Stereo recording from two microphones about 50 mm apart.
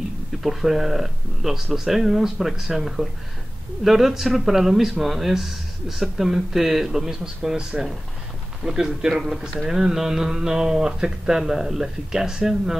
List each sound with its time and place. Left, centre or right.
0.4 s a man's voice: centre; by 8.8 s right
9.2 s speech: centre